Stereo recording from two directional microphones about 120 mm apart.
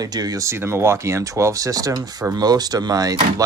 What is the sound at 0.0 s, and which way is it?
Speech, 30° right (ahead or behind).